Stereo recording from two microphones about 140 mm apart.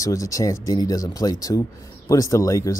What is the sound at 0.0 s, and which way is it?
Speech, 25° left (ahead or behind).